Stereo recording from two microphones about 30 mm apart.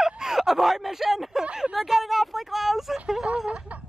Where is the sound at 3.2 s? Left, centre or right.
Right.